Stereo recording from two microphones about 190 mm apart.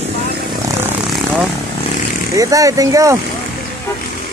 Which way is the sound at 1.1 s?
5° right (ahead or behind).